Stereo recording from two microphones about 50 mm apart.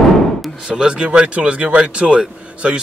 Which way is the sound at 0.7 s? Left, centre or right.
Right.